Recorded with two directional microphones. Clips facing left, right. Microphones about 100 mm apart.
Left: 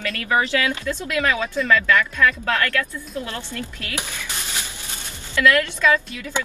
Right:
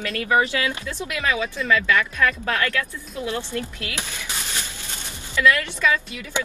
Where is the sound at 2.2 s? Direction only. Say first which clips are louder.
Left 2 dB; 20° right (ahead or behind).